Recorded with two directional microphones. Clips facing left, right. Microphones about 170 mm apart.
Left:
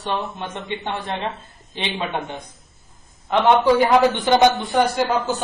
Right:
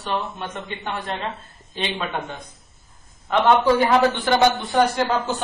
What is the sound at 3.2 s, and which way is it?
A man's voice, 15° left (ahead or behind).